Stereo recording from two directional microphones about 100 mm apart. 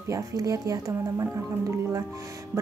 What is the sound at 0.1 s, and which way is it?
Speech, 35° right (ahead or behind).